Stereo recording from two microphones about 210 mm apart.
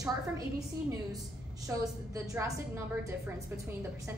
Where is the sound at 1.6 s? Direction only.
15° right (ahead or behind).